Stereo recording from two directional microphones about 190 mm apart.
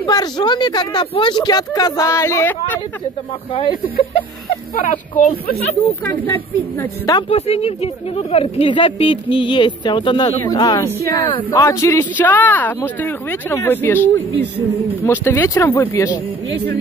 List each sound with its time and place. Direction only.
0.0 s speech: 20° left (ahead or behind)
4.8 s speech: 45° left (ahead or behind)
6.0 s speech: 10° left (ahead or behind)
7.2 s speech: 30° left (ahead or behind); by 16.2 s 15° left (ahead or behind)